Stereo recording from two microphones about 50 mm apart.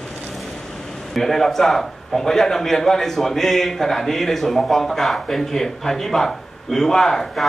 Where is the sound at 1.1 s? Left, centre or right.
Centre.